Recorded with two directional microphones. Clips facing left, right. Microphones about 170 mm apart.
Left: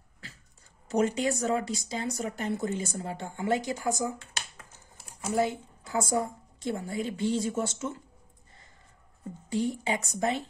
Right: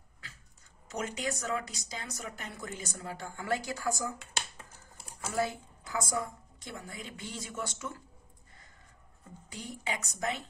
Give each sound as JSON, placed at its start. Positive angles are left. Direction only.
{"t": 0.8, "sound": "speech", "side_deg": 30}
{"t": 5.3, "sound": "speech", "side_deg": 25}
{"t": 9.5, "sound": "speech", "side_deg": 30}